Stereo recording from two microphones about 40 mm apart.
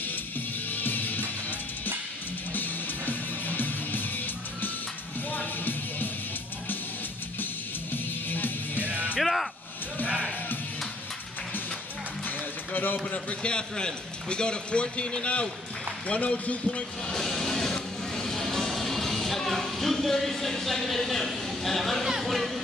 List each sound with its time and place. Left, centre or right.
0.7 s music: left
2.5 s music: left
5.3 s music: left
7.9 s music: left
9.2 s music: centre
12.3 s music: left
13.1 s a man's voice: left
17.1 s music: centre
22.0 s speech: centre
22.3 s speech: centre